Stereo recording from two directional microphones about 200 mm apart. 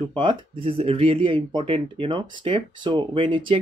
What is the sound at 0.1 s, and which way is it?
Speech, 25° right (ahead or behind).